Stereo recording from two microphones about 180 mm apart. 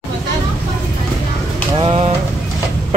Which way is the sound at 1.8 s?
35° right (ahead or behind).